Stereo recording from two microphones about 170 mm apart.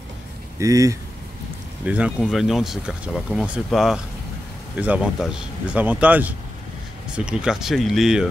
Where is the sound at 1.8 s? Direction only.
5° right (ahead or behind).